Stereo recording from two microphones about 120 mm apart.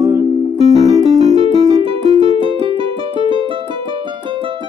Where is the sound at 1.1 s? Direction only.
65° right (ahead or behind).